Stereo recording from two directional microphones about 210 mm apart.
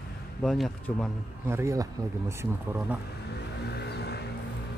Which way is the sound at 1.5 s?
15° right (ahead or behind).